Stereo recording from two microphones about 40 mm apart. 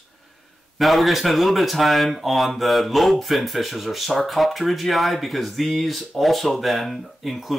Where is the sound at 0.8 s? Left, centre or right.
Centre.